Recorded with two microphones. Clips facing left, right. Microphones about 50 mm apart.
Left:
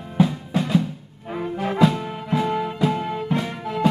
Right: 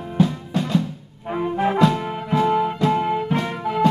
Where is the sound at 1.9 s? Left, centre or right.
Centre.